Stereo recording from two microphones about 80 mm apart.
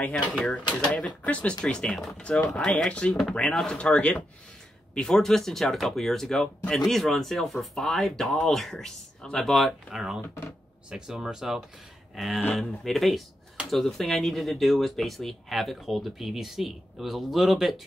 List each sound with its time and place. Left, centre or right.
0.3 s speech: centre
9.8 s speech: centre
10.2 s speech: left
10.9 s speech: centre